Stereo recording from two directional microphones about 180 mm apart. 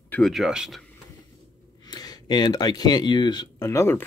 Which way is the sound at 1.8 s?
20° left (ahead or behind).